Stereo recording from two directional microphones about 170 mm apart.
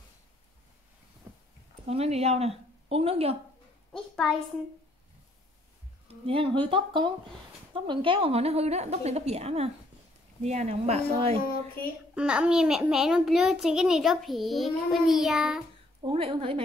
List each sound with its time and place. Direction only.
1.9 s speech: 35° right (ahead or behind)
6.0 s a woman's voice: 30° right (ahead or behind)
12.2 s a child's voice: 5° right (ahead or behind)
16.0 s a woman's voice: 30° right (ahead or behind)